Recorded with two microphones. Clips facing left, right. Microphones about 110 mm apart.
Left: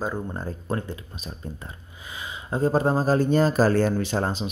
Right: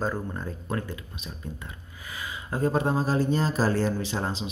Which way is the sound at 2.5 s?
30° left (ahead or behind).